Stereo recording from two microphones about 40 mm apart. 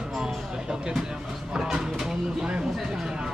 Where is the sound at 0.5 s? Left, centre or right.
Centre.